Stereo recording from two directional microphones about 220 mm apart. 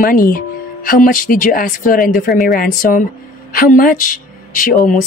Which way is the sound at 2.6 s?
40° left (ahead or behind).